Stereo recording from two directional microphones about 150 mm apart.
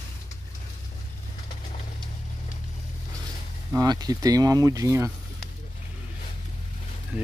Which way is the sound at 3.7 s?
25° right (ahead or behind).